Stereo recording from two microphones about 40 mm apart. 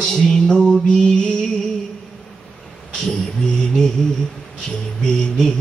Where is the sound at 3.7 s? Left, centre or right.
Centre.